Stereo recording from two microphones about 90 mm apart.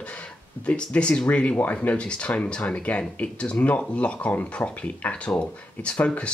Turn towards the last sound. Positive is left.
turn(degrees=15)  # may be behind; listen again after turning